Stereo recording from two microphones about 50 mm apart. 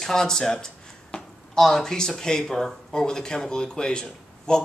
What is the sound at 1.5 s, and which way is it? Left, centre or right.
Speech, centre.